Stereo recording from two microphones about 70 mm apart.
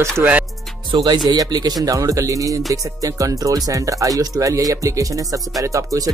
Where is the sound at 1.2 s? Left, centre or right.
Right.